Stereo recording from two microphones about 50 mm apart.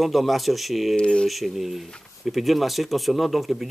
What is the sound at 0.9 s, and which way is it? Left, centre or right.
Speech, centre.